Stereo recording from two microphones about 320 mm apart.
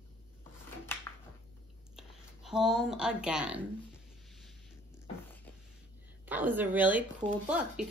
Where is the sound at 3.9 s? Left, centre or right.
Centre.